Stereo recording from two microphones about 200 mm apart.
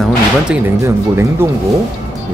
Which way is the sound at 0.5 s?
10° right (ahead or behind).